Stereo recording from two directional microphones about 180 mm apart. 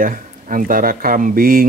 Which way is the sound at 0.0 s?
50° right (ahead or behind).